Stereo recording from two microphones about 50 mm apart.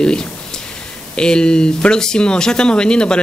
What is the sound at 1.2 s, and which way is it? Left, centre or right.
Speech, centre.